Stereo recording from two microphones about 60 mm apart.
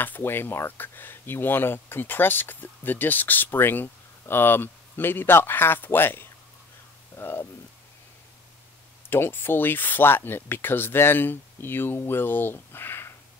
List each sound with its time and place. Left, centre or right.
0.0 s speech: left
9.1 s speech: left